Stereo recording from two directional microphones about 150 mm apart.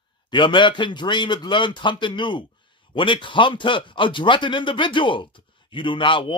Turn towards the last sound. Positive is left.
turn(degrees=35)  # may be behind; listen again after turning